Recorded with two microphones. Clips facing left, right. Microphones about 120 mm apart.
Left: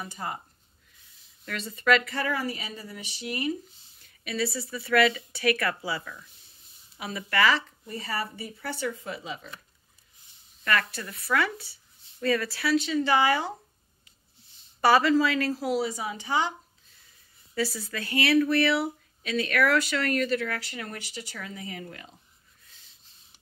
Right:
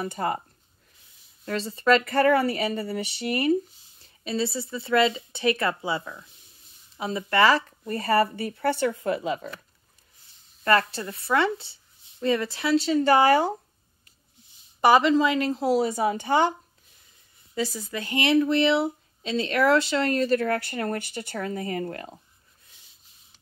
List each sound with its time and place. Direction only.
0.0 s speech: 60° right (ahead or behind)
1.4 s speech: 30° right (ahead or behind)
2.0 s speech: 60° right (ahead or behind)
4.0 s speech: 30° right (ahead or behind)
7.8 s speech: 60° right (ahead or behind)
10.6 s speech: 30° right (ahead or behind)
12.7 s speech: 40° right (ahead or behind)
14.8 s speech: 20° right (ahead or behind)
15.7 s speech: 45° right (ahead or behind)
17.6 s speech: 20° right (ahead or behind)
20.2 s speech: 45° right (ahead or behind)